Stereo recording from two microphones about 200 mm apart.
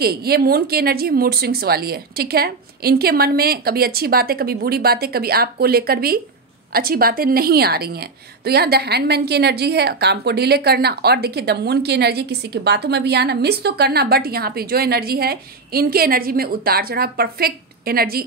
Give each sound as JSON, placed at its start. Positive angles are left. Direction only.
{"t": 0.0, "sound": "a woman's voice", "side_deg": -50}